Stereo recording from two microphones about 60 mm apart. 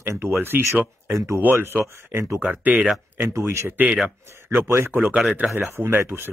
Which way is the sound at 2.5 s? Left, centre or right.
Right.